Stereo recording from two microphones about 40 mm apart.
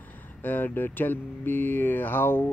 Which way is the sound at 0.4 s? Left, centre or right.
Left.